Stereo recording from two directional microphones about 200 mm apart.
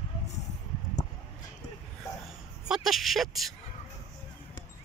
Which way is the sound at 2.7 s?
Centre (ahead or behind).